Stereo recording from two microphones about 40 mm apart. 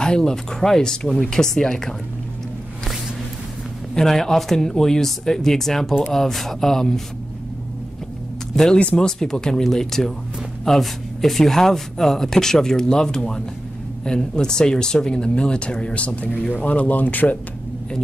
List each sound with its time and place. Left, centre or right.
0.0 s speech: centre
3.9 s speech: centre
8.9 s speech: centre; by 17.4 s left